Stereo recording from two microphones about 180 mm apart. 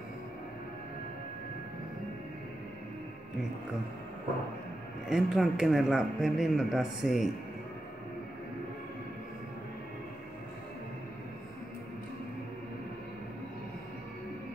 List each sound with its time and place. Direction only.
5.1 s speech: centre (ahead or behind)